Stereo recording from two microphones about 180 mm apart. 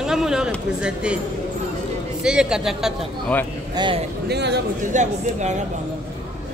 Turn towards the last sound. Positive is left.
turn(degrees=-40)  # may be behind; listen again after turning